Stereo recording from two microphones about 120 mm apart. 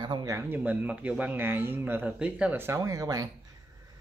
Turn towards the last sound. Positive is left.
turn(degrees=-30)  # may be behind; listen again after turning